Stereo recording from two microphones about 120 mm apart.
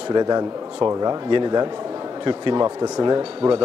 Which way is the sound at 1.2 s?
40° right (ahead or behind).